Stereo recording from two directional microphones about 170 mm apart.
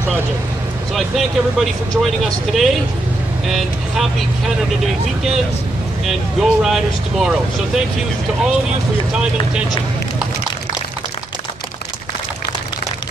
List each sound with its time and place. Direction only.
0.9 s speech: centre (ahead or behind)
6.0 s speech: centre (ahead or behind)
9.1 s speech: 5° right (ahead or behind)